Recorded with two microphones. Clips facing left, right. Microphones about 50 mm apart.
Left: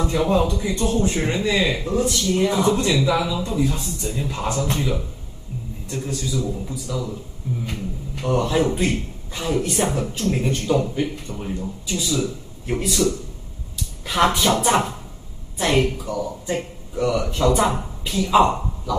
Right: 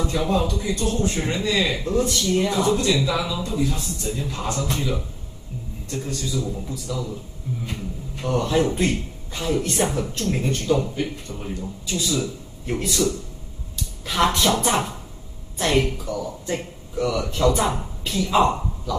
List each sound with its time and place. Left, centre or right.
0.0 s a man's voice: left
2.0 s speech: centre
2.5 s a man's voice: centre
4.1 s speech: centre
4.4 s speech: centre
8.2 s speech: centre
10.8 s a man's voice: left
11.3 s speech: centre